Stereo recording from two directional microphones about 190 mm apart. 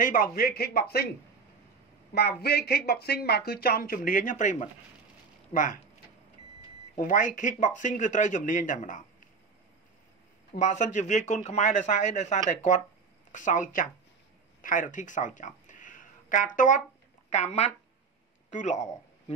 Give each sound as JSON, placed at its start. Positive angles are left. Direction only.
{"t": 0.0, "sound": "speech", "side_deg": 45}
{"t": 2.4, "sound": "speech", "side_deg": 60}
{"t": 7.0, "sound": "speech", "side_deg": 45}
{"t": 10.5, "sound": "speech", "side_deg": 40}